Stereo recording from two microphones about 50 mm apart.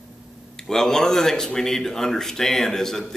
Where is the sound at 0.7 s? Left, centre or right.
Centre.